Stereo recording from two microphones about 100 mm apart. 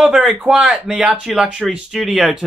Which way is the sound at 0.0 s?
5° right (ahead or behind).